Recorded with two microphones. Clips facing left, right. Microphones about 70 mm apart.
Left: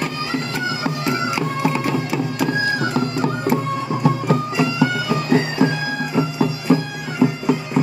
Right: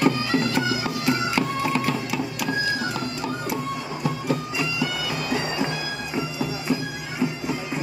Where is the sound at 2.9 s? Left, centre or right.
Left.